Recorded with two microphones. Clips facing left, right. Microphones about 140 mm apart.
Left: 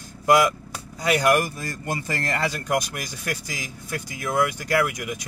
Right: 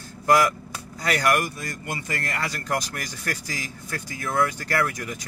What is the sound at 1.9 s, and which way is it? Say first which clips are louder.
Speech: left 4 dB; 35° left (ahead or behind).